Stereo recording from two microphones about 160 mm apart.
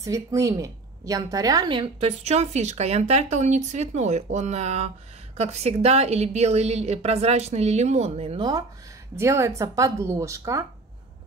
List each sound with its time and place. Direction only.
0.0 s a woman's voice: 20° right (ahead or behind); by 8.5 s 40° right (ahead or behind)
9.1 s speech: 15° right (ahead or behind)